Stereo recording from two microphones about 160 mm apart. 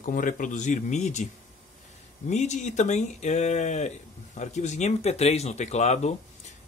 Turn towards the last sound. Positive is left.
turn(degrees=45)  # may be behind; listen again after turning